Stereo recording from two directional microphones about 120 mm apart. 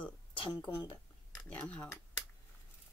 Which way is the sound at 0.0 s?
45° left (ahead or behind).